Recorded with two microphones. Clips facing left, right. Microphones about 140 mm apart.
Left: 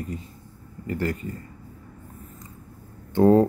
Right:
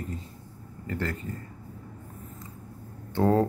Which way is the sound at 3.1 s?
15° left (ahead or behind).